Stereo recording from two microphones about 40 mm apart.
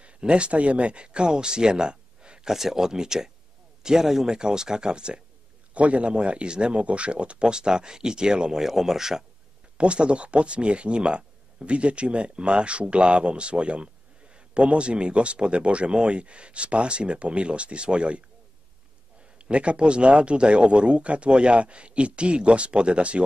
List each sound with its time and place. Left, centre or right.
0.0 s speech: right
2.5 s speech: centre
5.8 s speech: right; by 9.2 s centre
9.8 s speech: right
19.3 s speech: right